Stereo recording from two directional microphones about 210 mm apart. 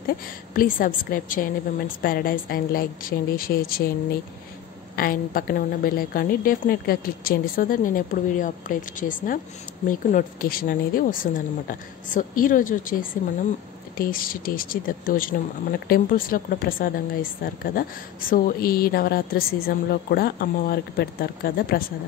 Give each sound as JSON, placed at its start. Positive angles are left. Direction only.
{"t": 0.6, "sound": "a woman's voice", "side_deg": 40}
{"t": 4.9, "sound": "a woman's voice", "side_deg": 45}